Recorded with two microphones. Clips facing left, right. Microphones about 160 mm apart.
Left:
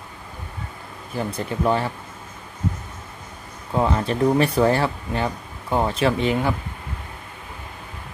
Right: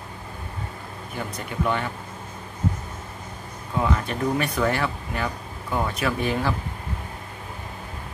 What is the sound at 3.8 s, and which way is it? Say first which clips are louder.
Speech: left 5 dB; 30° left (ahead or behind).